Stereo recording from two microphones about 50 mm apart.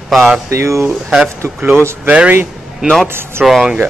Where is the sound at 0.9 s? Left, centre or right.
Centre.